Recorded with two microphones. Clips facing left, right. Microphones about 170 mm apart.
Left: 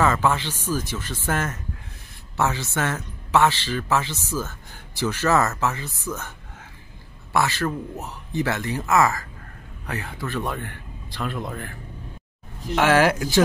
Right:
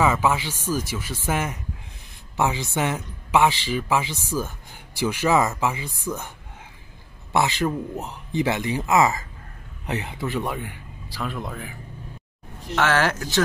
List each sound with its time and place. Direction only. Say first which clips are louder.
0.0 s speech: even; 10° right (ahead or behind)
7.3 s speech: right 1 dB; 20° right (ahead or behind); by 11.7 s centre (ahead or behind)
12.7 s speech: left 3 dB; 10° left (ahead or behind)